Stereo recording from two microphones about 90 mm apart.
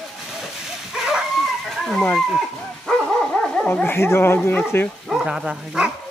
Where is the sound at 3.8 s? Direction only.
25° left (ahead or behind).